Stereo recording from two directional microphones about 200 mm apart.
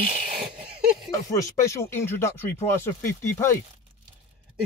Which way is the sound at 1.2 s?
15° left (ahead or behind).